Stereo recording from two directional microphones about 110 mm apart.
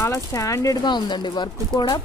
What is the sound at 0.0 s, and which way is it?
Speech, 30° left (ahead or behind).